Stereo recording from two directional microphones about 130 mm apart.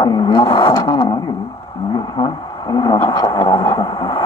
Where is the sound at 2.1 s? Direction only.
30° left (ahead or behind).